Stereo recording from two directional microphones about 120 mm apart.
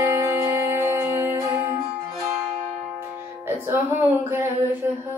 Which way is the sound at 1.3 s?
35° right (ahead or behind).